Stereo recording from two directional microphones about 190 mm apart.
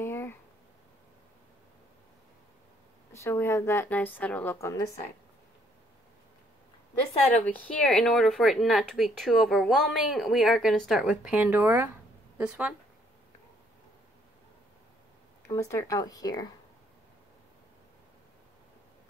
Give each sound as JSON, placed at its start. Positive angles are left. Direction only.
{"t": 0.0, "sound": "a sound", "side_deg": 10}
{"t": 3.1, "sound": "a woman's voice", "side_deg": 10}
{"t": 7.4, "sound": "speech", "side_deg": 5}
{"t": 15.4, "sound": "speech", "side_deg": 15}